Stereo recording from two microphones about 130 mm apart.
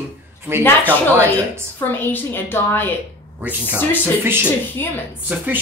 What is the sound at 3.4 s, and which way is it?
Speech, 15° right (ahead or behind).